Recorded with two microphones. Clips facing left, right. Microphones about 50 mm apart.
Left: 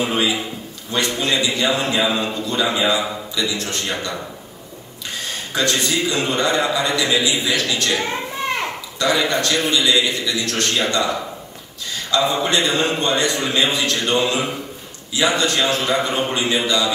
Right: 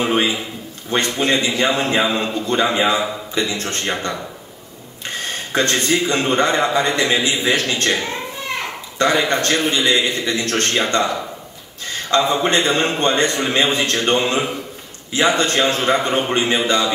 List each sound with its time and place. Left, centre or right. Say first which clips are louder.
0.0 s a man's voice: right 2 dB; right
5.1 s a man's voice: right 4 dB; right
12.1 s a man's voice: right 2 dB; right